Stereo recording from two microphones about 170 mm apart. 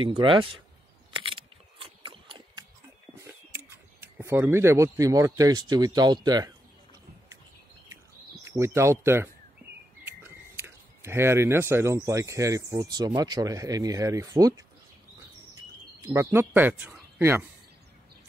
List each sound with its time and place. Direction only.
0.2 s speech: 30° right (ahead or behind)
1.1 s a sound: 30° right (ahead or behind)
3.2 s speech: 15° right (ahead or behind)
8.5 s speech: 15° right (ahead or behind)
16.1 s speech: 15° right (ahead or behind)